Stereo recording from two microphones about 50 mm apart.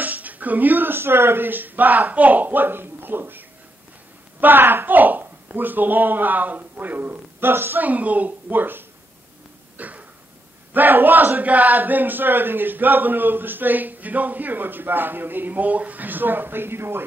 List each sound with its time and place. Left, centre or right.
0.0 s speech: right
7.8 s speech: right
9.8 s a sound: right
10.7 s speech: right